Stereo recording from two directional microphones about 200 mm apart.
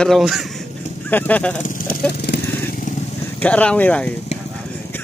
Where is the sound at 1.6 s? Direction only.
45° left (ahead or behind).